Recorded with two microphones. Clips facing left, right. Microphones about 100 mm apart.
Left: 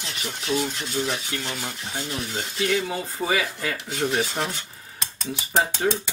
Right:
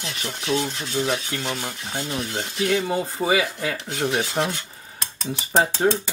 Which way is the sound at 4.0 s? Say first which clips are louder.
Right 2 dB; 5° right (ahead or behind).